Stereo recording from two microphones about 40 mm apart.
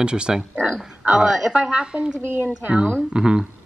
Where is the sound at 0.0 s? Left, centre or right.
Right.